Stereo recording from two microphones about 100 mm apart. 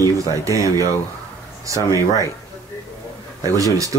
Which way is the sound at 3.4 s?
35° right (ahead or behind).